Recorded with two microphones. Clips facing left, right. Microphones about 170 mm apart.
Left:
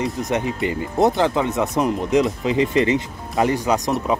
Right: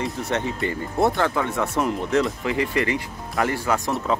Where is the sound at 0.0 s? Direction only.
15° left (ahead or behind).